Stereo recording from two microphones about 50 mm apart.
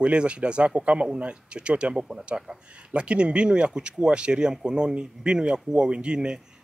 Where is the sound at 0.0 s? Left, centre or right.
Right.